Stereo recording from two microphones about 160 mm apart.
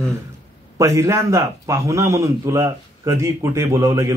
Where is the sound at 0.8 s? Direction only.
20° right (ahead or behind).